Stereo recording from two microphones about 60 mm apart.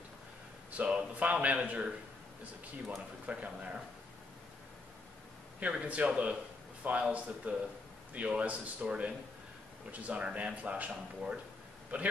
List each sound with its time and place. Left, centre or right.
0.8 s speech: centre
3.3 s speech: right
5.6 s speech: right